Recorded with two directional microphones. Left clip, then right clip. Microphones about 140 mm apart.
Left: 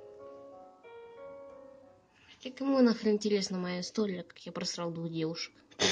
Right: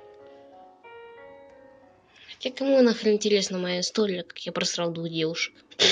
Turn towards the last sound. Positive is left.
turn(degrees=35)  # may be behind; listen again after turning